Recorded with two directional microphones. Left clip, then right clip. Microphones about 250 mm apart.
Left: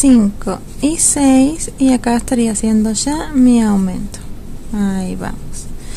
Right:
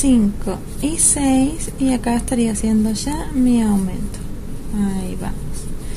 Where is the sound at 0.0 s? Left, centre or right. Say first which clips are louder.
Left 5 dB; left.